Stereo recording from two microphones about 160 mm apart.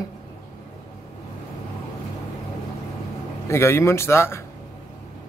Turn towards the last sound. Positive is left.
turn(degrees=15)  # may be behind; listen again after turning